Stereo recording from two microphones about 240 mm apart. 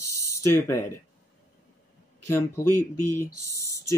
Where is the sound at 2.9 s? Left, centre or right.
Left.